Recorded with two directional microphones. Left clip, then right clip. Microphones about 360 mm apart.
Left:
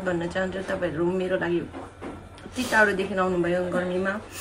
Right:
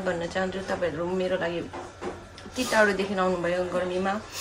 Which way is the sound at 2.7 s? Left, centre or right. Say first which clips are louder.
Left 2 dB; centre.